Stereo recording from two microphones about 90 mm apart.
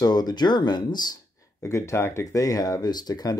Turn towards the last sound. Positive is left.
turn(degrees=45)  # may be behind; listen again after turning